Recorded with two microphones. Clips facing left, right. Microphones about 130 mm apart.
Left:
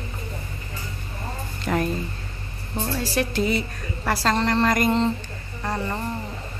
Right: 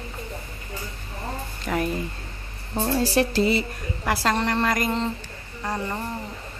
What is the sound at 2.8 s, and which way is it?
Speech, 25° right (ahead or behind).